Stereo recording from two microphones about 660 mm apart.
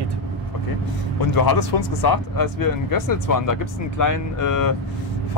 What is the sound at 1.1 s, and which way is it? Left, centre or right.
Speech, left.